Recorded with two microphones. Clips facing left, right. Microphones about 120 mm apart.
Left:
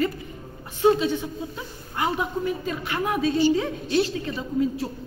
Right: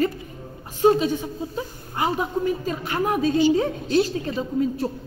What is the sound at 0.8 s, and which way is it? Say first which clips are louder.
A woman's voice: right 2 dB; 40° right (ahead or behind).